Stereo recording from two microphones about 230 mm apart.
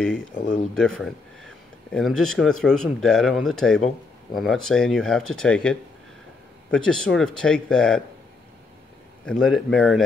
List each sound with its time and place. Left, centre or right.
0.0 s speech: centre
0.4 s speech: left
0.7 s speech: centre
9.2 s speech: centre